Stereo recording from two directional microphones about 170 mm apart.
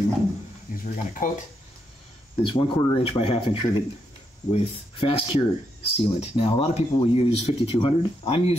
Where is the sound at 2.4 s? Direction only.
30° left (ahead or behind).